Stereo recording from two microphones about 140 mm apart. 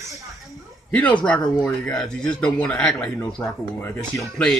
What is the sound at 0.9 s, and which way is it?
Speech, 10° left (ahead or behind).